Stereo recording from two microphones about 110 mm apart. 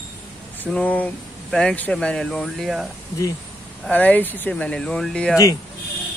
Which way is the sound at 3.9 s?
15° left (ahead or behind).